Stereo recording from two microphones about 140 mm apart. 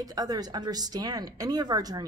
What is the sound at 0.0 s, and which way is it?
A woman's voice, 25° right (ahead or behind).